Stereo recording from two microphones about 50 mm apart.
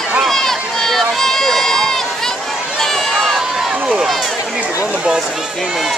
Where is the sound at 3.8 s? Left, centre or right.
Centre.